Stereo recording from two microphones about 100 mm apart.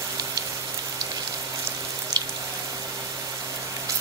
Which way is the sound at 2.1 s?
40° right (ahead or behind).